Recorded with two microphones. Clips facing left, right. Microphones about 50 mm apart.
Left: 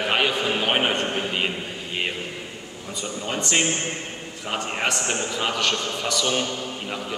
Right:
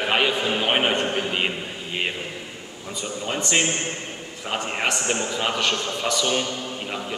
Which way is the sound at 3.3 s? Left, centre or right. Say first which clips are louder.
Right 1 dB; centre.